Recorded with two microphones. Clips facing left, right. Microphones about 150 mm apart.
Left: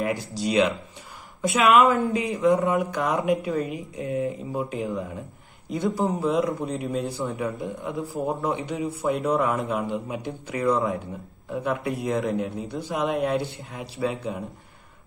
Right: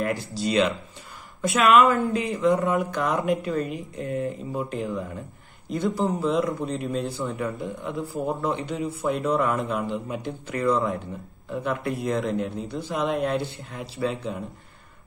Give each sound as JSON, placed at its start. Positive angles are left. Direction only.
{"t": 0.0, "sound": "a man's voice", "side_deg": 15}
{"t": 6.2, "sound": "a man's voice", "side_deg": 5}